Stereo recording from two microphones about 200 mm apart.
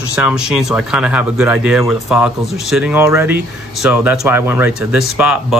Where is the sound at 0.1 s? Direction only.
5° right (ahead or behind).